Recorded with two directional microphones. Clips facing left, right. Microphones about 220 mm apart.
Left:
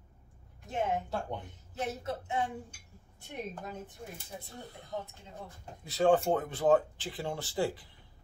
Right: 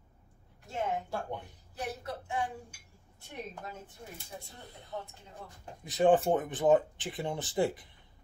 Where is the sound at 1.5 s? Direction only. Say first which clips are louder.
Left 2 dB; 20° left (ahead or behind).